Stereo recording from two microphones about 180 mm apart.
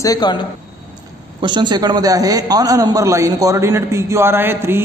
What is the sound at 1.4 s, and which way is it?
A man's voice, 25° right (ahead or behind).